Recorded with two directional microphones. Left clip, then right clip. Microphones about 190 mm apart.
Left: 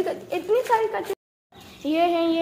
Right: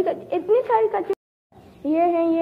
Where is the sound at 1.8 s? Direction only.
10° right (ahead or behind).